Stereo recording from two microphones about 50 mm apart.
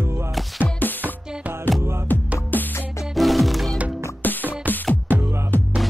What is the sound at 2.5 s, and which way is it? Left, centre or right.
Music, left.